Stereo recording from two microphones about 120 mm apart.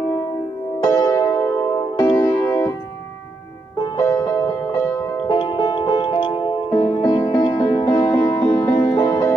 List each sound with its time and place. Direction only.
0.8 s music: 30° left (ahead or behind)
2.4 s music: 15° left (ahead or behind)
3.8 s music: 30° left (ahead or behind)
5.1 s music: 45° left (ahead or behind); by 9.3 s 30° left (ahead or behind)